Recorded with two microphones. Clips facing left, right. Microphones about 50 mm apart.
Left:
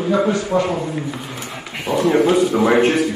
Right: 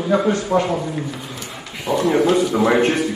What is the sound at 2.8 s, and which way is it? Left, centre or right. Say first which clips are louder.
Speech: left 2 dB; left.